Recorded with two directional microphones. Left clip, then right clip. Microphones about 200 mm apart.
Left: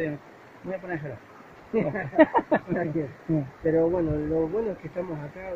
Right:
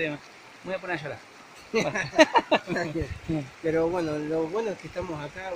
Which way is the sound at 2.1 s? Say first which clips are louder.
Even; 15° right (ahead or behind).